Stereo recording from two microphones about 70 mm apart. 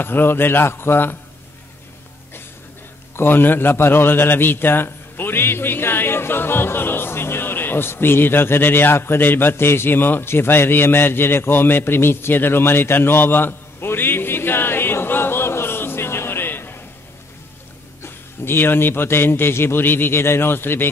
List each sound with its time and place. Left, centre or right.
0.0 s a man's voice: left
3.2 s a man's voice: left
18.0 s a man's voice: left